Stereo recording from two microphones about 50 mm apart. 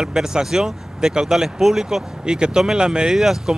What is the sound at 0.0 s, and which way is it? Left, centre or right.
Speech, centre.